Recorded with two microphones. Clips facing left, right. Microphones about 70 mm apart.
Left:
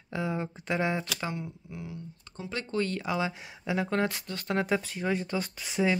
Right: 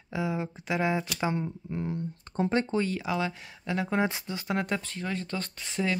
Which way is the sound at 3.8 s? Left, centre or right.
Centre.